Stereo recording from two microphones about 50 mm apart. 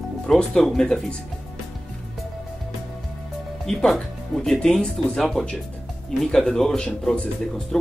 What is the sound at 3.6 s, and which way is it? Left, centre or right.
Speech, centre.